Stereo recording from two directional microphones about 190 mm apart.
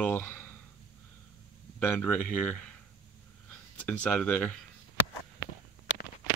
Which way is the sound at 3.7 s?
5° left (ahead or behind).